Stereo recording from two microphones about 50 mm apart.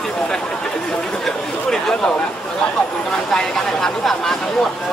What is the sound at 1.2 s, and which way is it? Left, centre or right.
Speech, centre.